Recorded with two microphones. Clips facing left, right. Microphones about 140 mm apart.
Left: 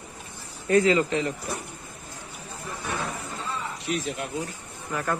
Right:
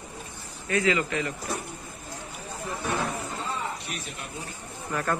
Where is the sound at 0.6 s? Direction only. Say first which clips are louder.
Left 5 dB; 35° left (ahead or behind).